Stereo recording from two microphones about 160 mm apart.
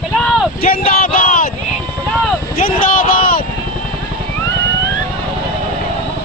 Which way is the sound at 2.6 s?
65° left (ahead or behind).